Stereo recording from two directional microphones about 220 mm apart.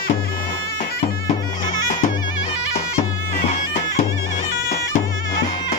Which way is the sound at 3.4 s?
30° left (ahead or behind).